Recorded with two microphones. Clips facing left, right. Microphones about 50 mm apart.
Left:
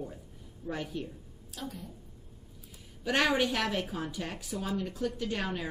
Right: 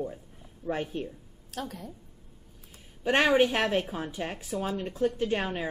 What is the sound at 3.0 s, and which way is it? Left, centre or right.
A woman's voice, right.